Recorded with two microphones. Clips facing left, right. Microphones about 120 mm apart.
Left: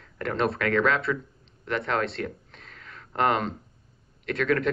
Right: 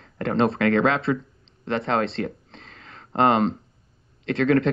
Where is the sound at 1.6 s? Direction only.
30° right (ahead or behind).